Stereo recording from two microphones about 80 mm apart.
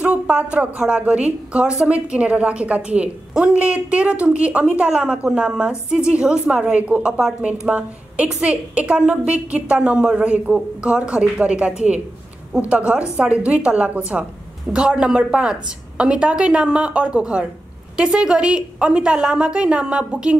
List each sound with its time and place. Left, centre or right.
0.0 s a woman's voice: centre